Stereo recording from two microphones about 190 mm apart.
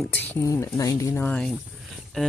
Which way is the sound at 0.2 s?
15° left (ahead or behind).